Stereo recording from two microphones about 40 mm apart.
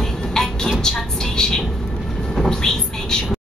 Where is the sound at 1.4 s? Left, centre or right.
Centre.